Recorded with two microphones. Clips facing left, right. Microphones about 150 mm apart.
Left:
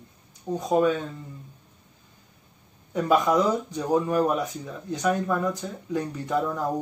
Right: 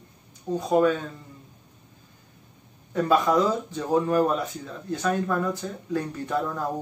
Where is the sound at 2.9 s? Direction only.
15° left (ahead or behind).